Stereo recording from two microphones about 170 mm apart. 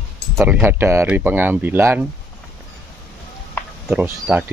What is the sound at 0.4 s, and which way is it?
Speech, 10° right (ahead or behind).